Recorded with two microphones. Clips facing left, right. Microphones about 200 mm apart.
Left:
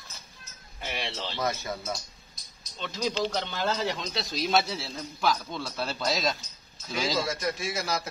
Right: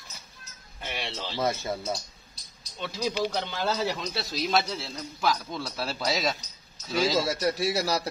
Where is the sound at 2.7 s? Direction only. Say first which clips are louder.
Right 1 dB; 10° right (ahead or behind).